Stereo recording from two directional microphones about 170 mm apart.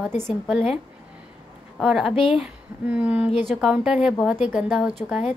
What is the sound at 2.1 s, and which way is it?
Speech, 30° left (ahead or behind).